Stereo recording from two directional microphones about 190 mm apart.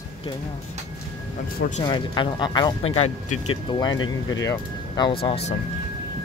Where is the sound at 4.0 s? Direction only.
90° left.